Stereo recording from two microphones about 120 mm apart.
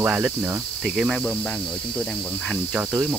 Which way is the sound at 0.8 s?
Centre (ahead or behind).